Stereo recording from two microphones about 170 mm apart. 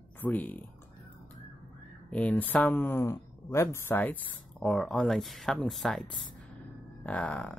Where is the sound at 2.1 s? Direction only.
10° left (ahead or behind).